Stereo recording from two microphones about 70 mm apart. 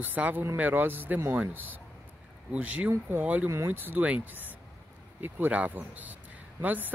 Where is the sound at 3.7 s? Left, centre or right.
Right.